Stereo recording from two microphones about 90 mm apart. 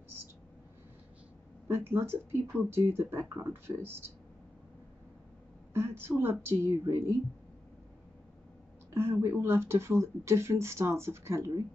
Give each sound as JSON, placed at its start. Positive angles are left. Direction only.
{"t": 1.7, "sound": "speech", "side_deg": -30}
{"t": 5.7, "sound": "speech", "side_deg": -30}
{"t": 8.9, "sound": "speech", "side_deg": -30}